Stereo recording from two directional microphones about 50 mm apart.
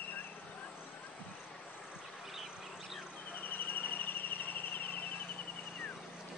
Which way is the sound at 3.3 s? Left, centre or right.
Left.